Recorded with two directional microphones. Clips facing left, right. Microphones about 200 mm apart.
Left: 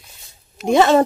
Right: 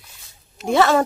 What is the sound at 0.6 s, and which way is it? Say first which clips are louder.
Speech: left 3 dB; 20° left (ahead or behind).